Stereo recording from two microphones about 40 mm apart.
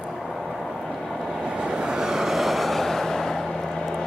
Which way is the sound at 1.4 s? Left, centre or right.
Right.